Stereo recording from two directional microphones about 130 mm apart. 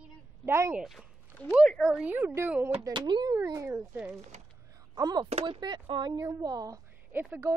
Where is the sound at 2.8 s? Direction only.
35° right (ahead or behind).